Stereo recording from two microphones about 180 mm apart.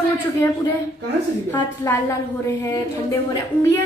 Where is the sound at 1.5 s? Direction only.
15° left (ahead or behind).